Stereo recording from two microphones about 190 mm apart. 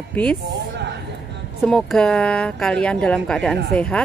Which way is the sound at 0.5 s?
65° right (ahead or behind).